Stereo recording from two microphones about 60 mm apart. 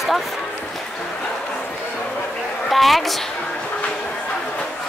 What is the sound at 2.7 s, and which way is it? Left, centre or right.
Speech, centre.